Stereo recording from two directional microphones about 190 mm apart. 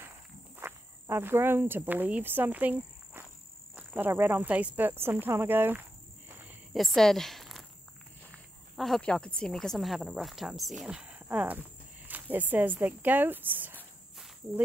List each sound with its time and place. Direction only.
0.6 s speech: 15° right (ahead or behind)
6.2 s cricket: 5° right (ahead or behind)
7.0 s speech: centre (ahead or behind)
8.7 s speech: centre (ahead or behind)